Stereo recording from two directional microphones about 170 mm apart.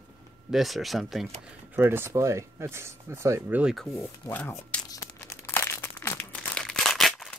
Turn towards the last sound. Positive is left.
turn(degrees=0)  # may be behind; listen again after turning